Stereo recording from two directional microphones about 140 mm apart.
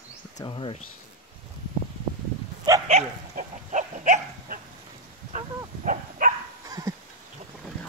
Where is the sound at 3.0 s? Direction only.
50° right (ahead or behind).